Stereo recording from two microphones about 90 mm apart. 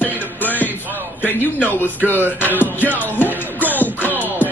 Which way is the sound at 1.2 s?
20° left (ahead or behind).